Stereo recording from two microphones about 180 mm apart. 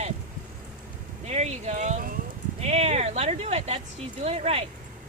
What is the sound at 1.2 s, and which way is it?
Speech, 35° right (ahead or behind).